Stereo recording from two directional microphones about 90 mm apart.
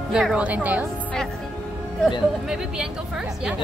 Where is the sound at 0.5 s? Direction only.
15° right (ahead or behind).